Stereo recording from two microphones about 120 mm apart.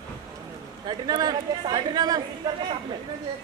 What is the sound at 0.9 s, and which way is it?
Speech, 35° right (ahead or behind).